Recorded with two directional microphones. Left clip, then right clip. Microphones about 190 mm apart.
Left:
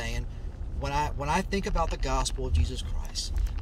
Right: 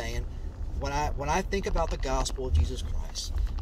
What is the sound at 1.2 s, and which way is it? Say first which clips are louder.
Speech: even; 15° left (ahead or behind).